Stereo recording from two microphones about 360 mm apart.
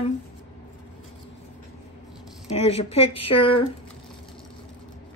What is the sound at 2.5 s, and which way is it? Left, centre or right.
Speech, centre.